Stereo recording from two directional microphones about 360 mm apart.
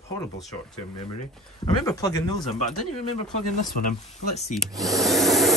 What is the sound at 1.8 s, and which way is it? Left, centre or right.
Speech, centre.